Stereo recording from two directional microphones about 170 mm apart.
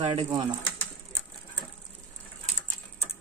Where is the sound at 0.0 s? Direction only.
35° right (ahead or behind).